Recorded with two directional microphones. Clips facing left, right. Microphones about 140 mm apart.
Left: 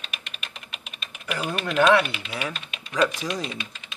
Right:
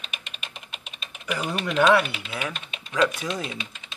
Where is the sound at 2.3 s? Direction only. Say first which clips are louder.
Even; 5° left (ahead or behind).